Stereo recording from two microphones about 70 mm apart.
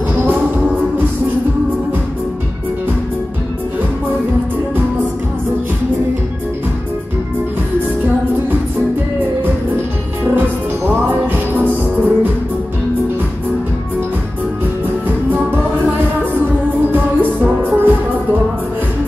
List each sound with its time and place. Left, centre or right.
0.1 s music: right
11.5 s music: right
16.9 s music: right